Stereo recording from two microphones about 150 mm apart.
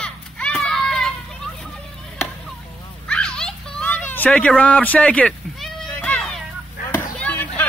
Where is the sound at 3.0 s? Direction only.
5° left (ahead or behind).